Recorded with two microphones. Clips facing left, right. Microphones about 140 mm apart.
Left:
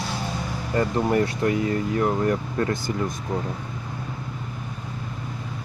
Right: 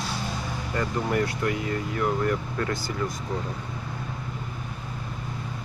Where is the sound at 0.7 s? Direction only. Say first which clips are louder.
Left 5 dB; 30° left (ahead or behind).